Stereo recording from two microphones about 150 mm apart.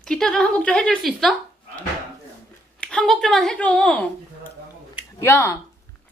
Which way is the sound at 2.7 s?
5° left (ahead or behind).